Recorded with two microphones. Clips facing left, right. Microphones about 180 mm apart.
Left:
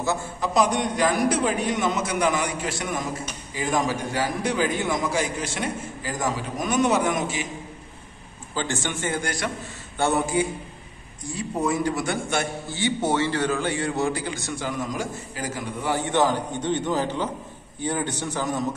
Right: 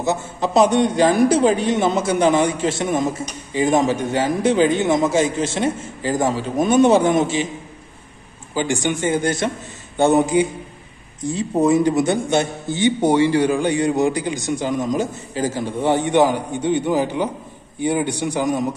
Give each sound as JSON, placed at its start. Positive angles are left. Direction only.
{"t": 0.0, "sound": "a man's voice", "side_deg": -20}
{"t": 8.5, "sound": "a man's voice", "side_deg": -15}